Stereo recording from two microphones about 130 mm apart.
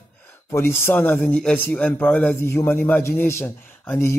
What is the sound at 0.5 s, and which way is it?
A man's voice, 20° left (ahead or behind).